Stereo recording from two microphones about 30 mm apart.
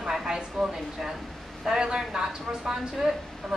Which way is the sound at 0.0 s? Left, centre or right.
Right.